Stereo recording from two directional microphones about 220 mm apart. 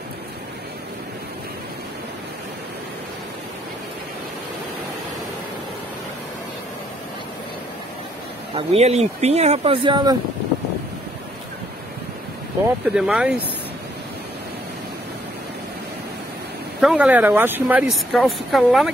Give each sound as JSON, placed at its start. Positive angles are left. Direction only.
{"t": 8.5, "sound": "speech", "side_deg": -30}
{"t": 12.8, "sound": "speech", "side_deg": -5}
{"t": 16.8, "sound": "speech", "side_deg": -5}